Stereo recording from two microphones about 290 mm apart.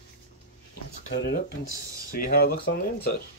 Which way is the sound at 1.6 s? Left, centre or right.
Left.